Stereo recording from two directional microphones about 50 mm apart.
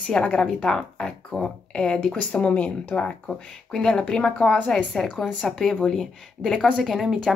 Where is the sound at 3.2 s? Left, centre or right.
Centre.